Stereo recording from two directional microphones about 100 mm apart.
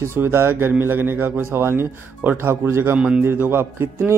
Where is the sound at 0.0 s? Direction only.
25° right (ahead or behind).